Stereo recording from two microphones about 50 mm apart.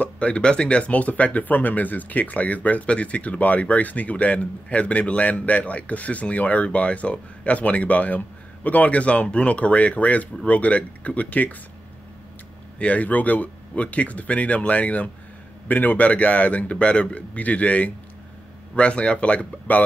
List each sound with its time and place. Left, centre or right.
0.0 s speech: left
12.7 s speech: left